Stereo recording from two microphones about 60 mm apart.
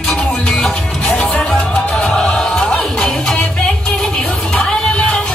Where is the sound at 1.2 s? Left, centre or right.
Centre.